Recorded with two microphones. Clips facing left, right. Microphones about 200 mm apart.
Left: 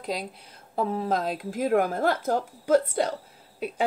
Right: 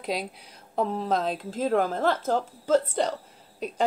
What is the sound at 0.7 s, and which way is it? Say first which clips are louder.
A woman's voice: even; 5° left (ahead or behind).